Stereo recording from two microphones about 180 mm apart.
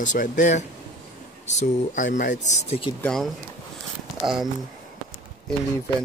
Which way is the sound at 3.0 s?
5° left (ahead or behind).